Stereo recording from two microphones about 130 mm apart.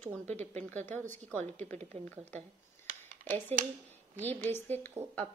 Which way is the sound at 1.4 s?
60° right (ahead or behind).